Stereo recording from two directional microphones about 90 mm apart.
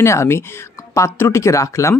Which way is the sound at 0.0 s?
30° left (ahead or behind).